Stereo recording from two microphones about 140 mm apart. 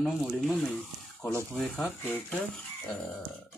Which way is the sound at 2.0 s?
15° left (ahead or behind).